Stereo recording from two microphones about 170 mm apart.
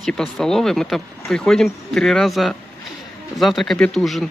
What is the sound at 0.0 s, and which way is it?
Speech, centre (ahead or behind).